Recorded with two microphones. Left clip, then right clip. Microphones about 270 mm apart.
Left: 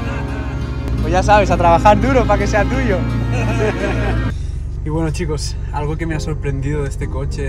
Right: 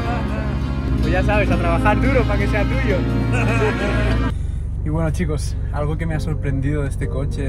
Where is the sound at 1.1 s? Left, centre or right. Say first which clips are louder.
Left 7 dB; centre.